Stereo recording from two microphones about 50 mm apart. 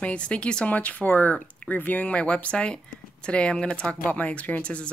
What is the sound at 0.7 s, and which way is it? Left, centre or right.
Speech, left.